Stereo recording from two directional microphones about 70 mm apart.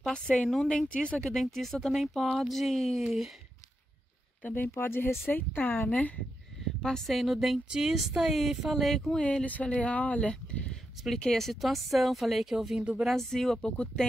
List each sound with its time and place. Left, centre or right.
0.1 s a woman's voice: centre
4.4 s speech: left
6.8 s a woman's voice: centre
9.4 s speech: centre
11.1 s a woman's voice: centre